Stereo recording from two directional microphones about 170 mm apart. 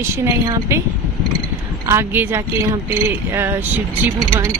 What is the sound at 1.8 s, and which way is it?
Speech, 15° right (ahead or behind).